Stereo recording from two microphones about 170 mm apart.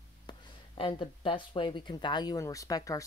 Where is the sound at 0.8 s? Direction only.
30° left (ahead or behind).